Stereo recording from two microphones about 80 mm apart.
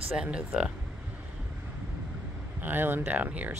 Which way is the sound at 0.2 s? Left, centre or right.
Centre.